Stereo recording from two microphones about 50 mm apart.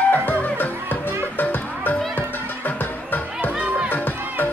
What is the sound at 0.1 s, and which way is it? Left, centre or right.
Music, left.